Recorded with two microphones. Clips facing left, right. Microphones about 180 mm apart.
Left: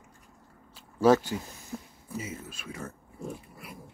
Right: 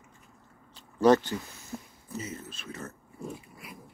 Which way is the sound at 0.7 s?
5° left (ahead or behind).